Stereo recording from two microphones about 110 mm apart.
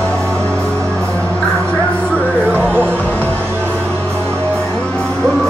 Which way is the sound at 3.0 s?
15° left (ahead or behind).